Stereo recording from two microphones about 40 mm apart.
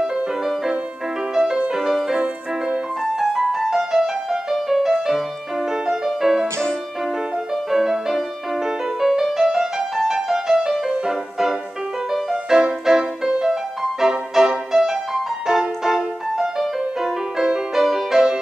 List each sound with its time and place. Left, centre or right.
1.3 s music: centre
3.2 s music: centre
7.7 s music: centre